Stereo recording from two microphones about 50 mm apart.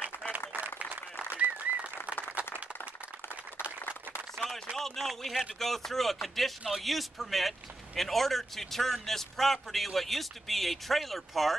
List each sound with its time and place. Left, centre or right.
0.5 s applause: right
4.7 s speech: centre